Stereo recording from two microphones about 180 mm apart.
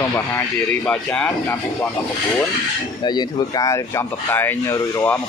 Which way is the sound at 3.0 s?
25° left (ahead or behind).